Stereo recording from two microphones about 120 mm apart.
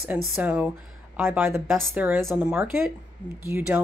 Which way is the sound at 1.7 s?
Centre (ahead or behind).